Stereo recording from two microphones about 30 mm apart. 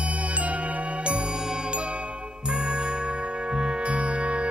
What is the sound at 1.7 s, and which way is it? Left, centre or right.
Jingle, right.